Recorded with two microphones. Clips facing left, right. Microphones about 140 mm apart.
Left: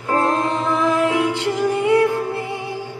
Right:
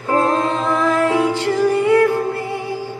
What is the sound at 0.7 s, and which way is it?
Music, 20° left (ahead or behind).